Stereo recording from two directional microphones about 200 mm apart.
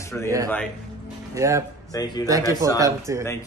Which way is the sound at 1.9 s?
20° left (ahead or behind).